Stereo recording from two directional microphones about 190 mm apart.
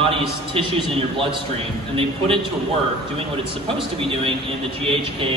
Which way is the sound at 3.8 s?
30° right (ahead or behind).